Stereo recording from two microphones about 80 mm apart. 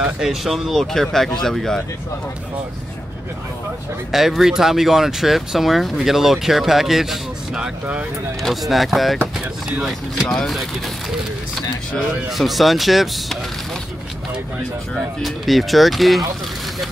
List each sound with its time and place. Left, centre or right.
0.0 s speech: centre
4.1 s speech: centre
7.8 s speech: centre
8.4 s speech: centre
10.2 s speech: centre
15.2 s speech: centre